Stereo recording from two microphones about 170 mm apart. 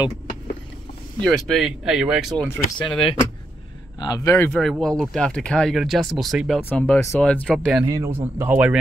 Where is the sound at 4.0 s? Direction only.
20° left (ahead or behind).